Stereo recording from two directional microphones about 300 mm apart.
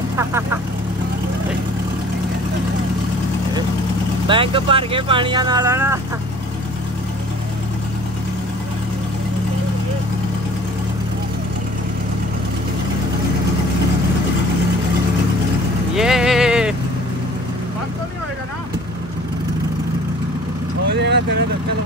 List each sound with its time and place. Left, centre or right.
0.2 s speech: centre
4.3 s speech: centre
15.9 s vehicle: centre
21.0 s vehicle: right